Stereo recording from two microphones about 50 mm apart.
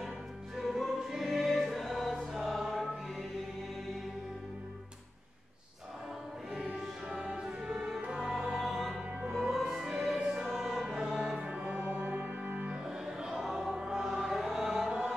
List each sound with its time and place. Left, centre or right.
0.6 s choir: centre
7.1 s music: centre
8.2 s music: centre
10.5 s choir: centre
11.1 s music: right
12.8 s music: centre